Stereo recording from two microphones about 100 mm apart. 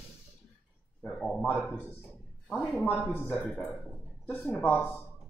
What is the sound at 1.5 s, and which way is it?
Speech, 20° left (ahead or behind).